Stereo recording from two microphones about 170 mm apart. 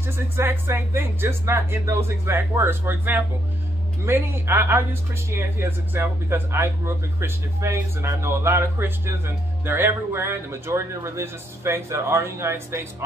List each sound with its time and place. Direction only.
0.4 s speech: 15° right (ahead or behind)